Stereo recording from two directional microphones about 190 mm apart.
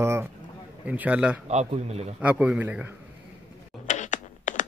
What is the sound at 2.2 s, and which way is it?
Speech, 5° right (ahead or behind).